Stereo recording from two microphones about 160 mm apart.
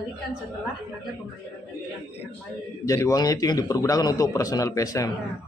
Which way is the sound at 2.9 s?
20° left (ahead or behind).